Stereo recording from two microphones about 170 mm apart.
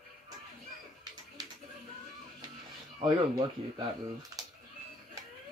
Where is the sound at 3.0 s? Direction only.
25° right (ahead or behind).